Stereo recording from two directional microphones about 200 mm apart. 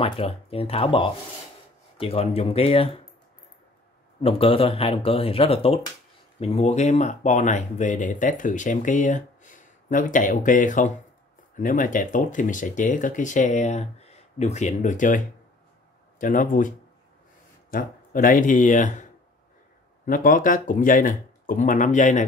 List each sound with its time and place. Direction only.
0.0 s speech: 30° left (ahead or behind)
4.2 s speech: 30° left (ahead or behind)
20.1 s speech: 45° left (ahead or behind)